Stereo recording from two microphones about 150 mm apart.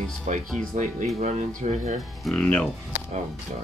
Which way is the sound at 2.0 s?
Centre (ahead or behind).